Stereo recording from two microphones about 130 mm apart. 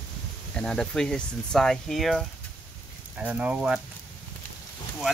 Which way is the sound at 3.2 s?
10° right (ahead or behind).